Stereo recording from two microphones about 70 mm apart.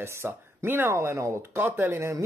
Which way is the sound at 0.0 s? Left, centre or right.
Right.